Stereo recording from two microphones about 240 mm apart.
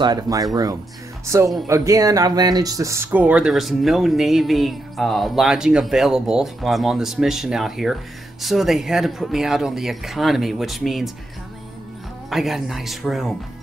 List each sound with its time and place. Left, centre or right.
0.0 s speech: centre
12.3 s speech: centre